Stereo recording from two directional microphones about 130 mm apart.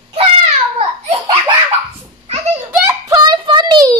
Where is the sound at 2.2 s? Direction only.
55° right (ahead or behind).